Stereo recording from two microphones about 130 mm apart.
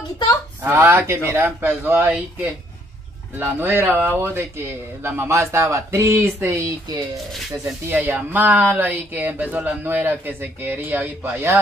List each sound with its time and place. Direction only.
0.6 s speech: 20° right (ahead or behind)